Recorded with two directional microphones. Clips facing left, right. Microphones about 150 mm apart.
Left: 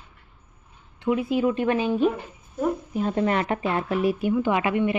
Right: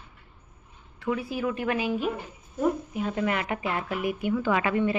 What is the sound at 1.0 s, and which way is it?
A woman's voice, 20° left (ahead or behind).